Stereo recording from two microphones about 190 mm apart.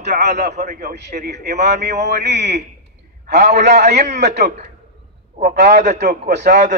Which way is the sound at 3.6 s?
60° right (ahead or behind).